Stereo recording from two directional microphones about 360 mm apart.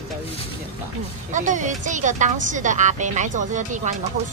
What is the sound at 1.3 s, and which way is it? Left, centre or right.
Speech, right.